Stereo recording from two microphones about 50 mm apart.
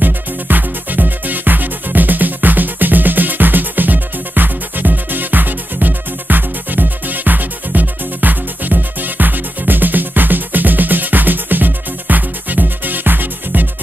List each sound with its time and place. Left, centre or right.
0.0 s music: right